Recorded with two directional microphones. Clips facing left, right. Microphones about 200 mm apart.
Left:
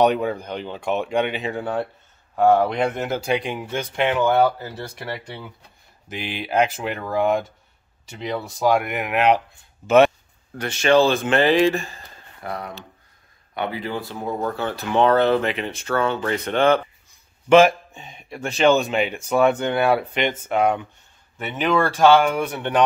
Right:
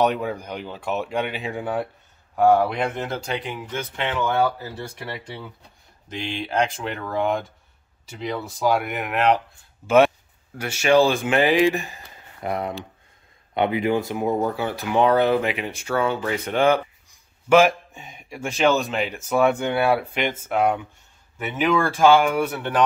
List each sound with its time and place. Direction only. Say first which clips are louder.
0.0 s speech: left 3 dB; centre (ahead or behind); by 4.5 s 15° left (ahead or behind)
4.6 s speech: left 1 dB; centre (ahead or behind)
9.8 s speech: left 2 dB; 10° right (ahead or behind)